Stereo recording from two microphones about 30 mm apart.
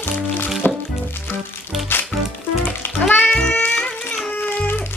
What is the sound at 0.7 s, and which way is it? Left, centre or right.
Music, left.